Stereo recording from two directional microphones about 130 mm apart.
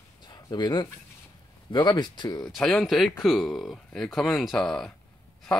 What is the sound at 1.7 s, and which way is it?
Speech, 35° left (ahead or behind).